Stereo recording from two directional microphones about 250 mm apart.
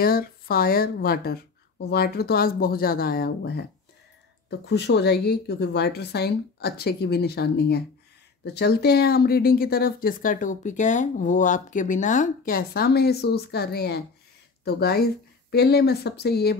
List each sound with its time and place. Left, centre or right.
0.0 s speech: left